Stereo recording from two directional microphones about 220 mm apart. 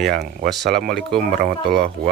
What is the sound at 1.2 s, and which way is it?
Speech, 40° right (ahead or behind).